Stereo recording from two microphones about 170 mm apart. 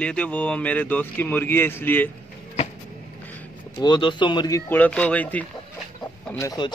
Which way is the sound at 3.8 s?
25° left (ahead or behind).